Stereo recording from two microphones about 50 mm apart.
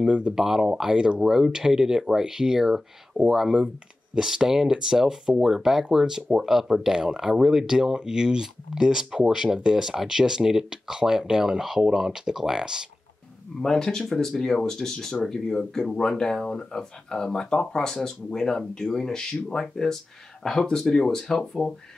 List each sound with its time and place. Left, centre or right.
0.0 s speech: centre
13.6 s speech: centre